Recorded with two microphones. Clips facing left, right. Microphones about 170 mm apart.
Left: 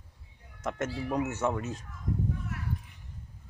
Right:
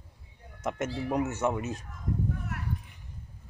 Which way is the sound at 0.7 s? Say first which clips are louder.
Right 1 dB; 15° right (ahead or behind).